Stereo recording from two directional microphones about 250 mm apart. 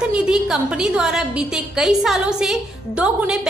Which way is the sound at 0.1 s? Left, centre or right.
Centre.